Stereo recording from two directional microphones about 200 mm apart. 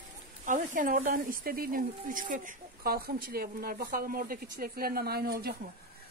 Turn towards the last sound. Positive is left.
turn(degrees=-50)  # may be behind; listen again after turning